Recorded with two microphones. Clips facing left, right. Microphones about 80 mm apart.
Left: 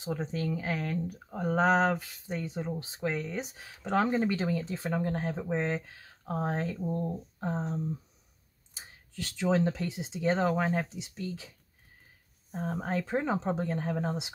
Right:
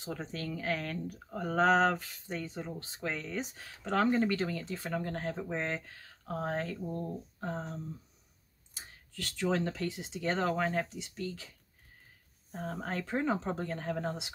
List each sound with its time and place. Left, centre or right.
0.0 s speech: centre